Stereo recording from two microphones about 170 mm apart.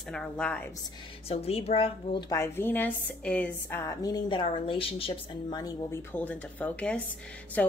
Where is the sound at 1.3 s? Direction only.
35° left (ahead or behind).